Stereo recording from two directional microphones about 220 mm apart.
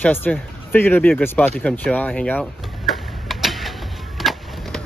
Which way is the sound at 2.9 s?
Centre (ahead or behind).